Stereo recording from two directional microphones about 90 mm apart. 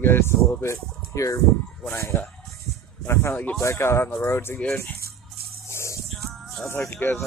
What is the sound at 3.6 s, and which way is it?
Speech, 30° left (ahead or behind).